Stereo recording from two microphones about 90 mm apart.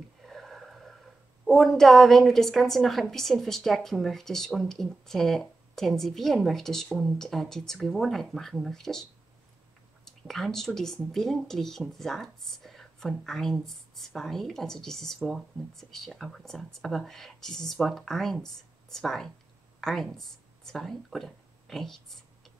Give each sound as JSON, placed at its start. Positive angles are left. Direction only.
{"t": 0.3, "sound": "a sound", "side_deg": 0}
{"t": 1.4, "sound": "speech", "side_deg": 0}
{"t": 10.0, "sound": "speech", "side_deg": 5}